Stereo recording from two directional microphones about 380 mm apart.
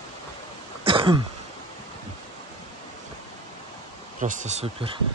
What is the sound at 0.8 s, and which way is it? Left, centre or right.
Throat clearing, centre.